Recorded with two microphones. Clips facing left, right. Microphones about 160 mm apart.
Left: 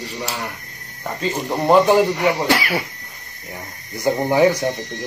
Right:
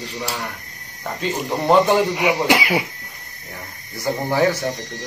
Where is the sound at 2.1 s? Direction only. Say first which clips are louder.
Even; 15° right (ahead or behind).